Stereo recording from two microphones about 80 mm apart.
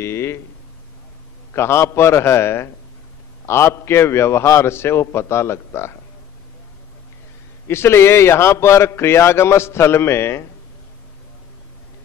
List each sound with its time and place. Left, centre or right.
0.0 s a sound: left
1.5 s a man's voice: left
7.6 s a man's voice: left